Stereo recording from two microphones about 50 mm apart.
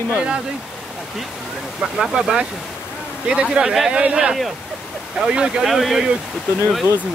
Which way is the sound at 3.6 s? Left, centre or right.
Right.